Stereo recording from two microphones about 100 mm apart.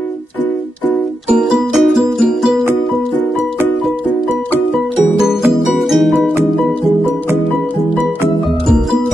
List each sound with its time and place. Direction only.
1.3 s music: centre (ahead or behind)
5.5 s music: centre (ahead or behind)